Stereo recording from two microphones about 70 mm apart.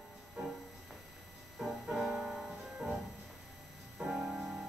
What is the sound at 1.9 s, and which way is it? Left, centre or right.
Music, centre.